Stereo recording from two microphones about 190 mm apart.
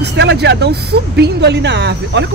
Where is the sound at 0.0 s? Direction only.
65° right (ahead or behind).